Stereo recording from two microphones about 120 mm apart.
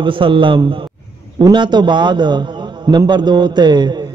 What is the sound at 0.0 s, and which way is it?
A man's voice, 45° right (ahead or behind).